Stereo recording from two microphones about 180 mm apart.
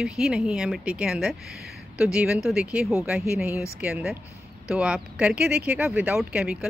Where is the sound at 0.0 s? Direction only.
5° right (ahead or behind).